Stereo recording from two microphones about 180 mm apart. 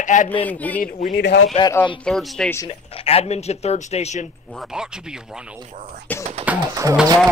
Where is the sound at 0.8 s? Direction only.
40° left (ahead or behind).